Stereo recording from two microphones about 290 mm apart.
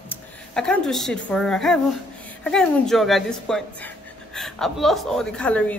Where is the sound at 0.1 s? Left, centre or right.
Centre.